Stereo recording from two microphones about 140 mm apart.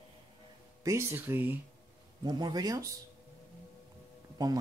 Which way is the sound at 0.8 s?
20° right (ahead or behind).